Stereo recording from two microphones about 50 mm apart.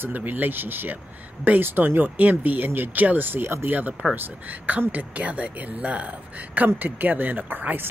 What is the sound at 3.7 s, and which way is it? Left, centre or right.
Speech, right.